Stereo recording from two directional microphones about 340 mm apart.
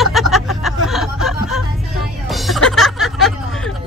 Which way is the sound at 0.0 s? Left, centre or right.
Centre.